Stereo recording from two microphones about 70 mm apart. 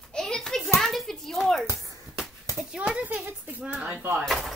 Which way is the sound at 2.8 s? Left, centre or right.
Centre.